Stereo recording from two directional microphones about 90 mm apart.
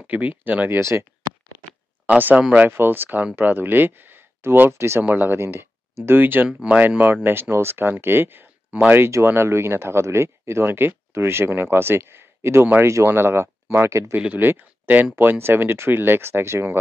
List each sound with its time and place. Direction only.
0.0 s speech: 15° right (ahead or behind)
0.7 s speech: 30° right (ahead or behind)
2.0 s speech: 20° right (ahead or behind)
14.1 s speech: 20° right (ahead or behind)